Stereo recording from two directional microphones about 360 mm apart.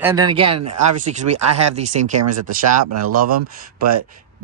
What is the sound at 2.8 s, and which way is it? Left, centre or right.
Speech, right.